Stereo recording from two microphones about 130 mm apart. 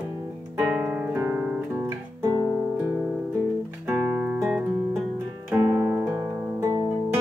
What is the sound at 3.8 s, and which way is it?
Music, 20° right (ahead or behind).